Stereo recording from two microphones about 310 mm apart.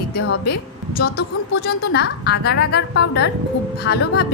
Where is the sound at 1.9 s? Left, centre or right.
Left.